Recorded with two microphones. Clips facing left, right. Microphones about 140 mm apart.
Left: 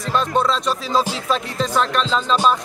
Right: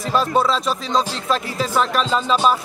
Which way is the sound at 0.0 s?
5° right (ahead or behind).